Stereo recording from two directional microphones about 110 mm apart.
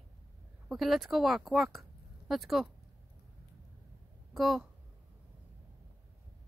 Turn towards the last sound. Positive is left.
turn(degrees=0)  # may be behind; listen again after turning